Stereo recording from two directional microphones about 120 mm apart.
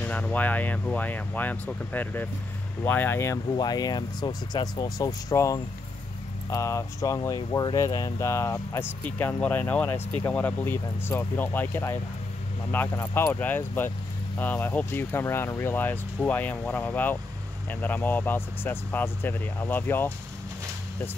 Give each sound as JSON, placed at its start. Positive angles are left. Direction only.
{"t": 0.0, "sound": "speech", "side_deg": 10}
{"t": 3.5, "sound": "speech", "side_deg": 35}